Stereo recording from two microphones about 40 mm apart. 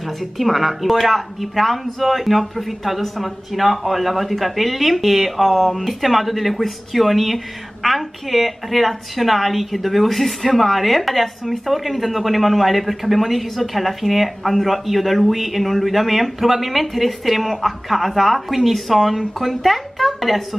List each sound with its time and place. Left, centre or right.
0.2 s speech: centre